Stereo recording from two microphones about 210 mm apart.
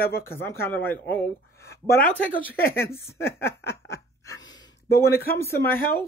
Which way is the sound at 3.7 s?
15° left (ahead or behind).